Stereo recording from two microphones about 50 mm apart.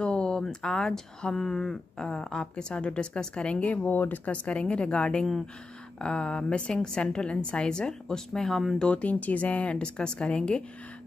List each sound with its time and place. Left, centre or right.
0.0 s speech: centre; by 4.2 s left
4.3 s speech: left; by 8.8 s centre
8.8 s speech: left